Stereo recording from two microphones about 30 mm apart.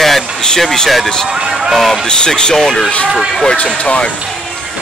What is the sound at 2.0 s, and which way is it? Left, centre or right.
Speech, left.